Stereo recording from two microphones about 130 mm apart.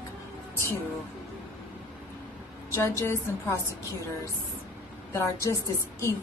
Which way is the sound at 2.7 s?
20° left (ahead or behind).